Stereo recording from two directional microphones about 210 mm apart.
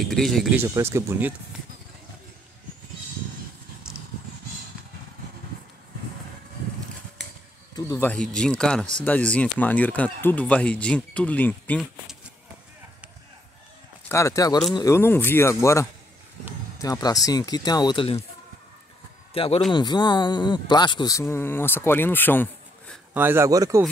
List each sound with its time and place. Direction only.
0.0 s speech: centre (ahead or behind)
0.6 s speech: 15° right (ahead or behind)
7.7 s a sound: 15° left (ahead or behind)
8.4 s speech: 5° left (ahead or behind)
14.0 s speech: 15° left (ahead or behind)
19.3 s speech: 25° left (ahead or behind); by 22.5 s 10° left (ahead or behind)
23.1 s speech: 10° right (ahead or behind)